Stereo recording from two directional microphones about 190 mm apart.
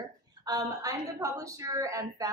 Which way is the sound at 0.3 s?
20° right (ahead or behind).